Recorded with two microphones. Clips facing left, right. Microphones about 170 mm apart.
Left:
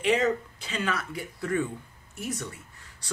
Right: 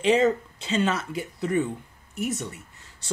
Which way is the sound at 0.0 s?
25° right (ahead or behind).